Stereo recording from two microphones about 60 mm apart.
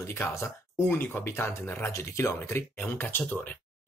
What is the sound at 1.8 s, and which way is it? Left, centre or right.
Speech, left.